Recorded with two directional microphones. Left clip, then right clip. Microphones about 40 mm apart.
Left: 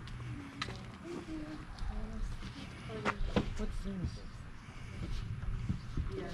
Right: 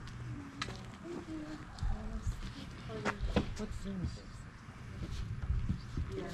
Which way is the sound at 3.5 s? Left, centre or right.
Right.